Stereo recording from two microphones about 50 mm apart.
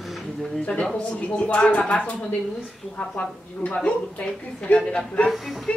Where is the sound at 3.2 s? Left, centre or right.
Left.